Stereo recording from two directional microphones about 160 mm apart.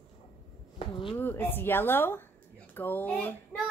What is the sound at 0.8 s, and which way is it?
Speech, 35° left (ahead or behind).